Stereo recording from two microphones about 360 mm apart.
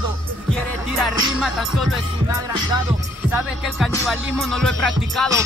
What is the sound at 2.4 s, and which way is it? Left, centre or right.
Music, centre.